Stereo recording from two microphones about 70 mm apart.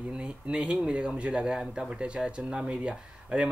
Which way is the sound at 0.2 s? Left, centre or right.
Centre.